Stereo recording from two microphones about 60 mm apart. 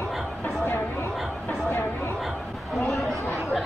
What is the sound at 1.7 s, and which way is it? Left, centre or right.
Chatter, left.